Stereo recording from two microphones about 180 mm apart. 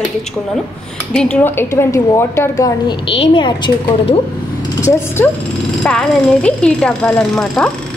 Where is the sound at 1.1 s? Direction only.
5° left (ahead or behind); by 4.2 s 25° left (ahead or behind).